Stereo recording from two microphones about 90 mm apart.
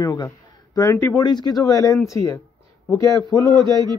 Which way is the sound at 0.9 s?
30° left (ahead or behind).